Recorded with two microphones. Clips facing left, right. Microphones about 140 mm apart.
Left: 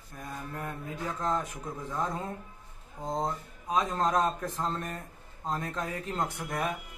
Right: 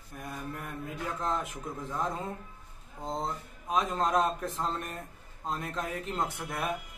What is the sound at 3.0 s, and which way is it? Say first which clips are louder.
Speech: left 2 dB; 20° left (ahead or behind).